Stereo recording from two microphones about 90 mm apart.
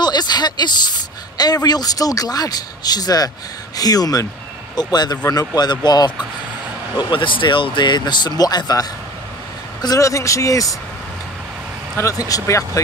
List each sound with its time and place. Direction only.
0.0 s speech: 50° left (ahead or behind)
7.0 s speech: 65° left (ahead or behind); by 10.8 s 40° left (ahead or behind)
12.3 s speech: 40° left (ahead or behind)